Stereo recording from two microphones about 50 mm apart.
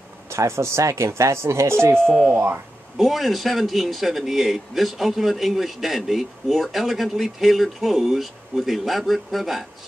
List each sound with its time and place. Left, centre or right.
0.3 s speech: right
3.0 s a man's voice: centre